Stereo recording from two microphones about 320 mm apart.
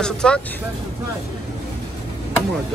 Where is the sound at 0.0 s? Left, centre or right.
Centre.